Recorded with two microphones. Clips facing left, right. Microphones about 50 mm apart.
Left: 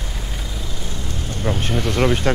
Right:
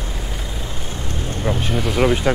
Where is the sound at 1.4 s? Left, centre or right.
Centre.